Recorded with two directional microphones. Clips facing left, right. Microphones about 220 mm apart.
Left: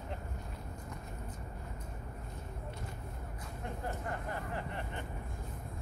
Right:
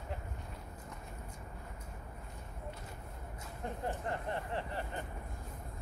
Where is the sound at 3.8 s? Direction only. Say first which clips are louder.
Right 2 dB; 30° right (ahead or behind).